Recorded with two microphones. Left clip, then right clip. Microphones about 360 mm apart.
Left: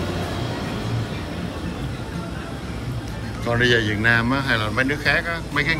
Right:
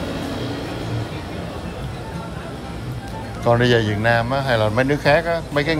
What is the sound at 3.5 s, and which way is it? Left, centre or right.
A man's voice, centre.